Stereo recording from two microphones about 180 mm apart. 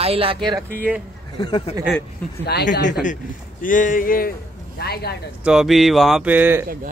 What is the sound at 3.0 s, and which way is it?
Speech, 45° left (ahead or behind).